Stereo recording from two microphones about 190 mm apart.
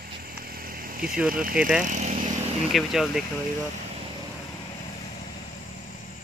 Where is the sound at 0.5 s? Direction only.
50° right (ahead or behind).